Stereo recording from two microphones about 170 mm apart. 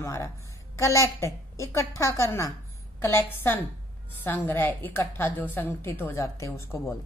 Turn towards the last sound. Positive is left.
turn(degrees=15)  # may be behind; listen again after turning